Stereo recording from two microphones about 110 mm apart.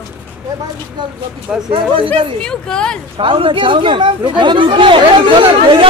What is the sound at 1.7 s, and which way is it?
Speech, 50° right (ahead or behind).